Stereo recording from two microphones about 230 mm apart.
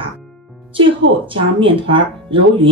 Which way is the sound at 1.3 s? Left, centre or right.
Right.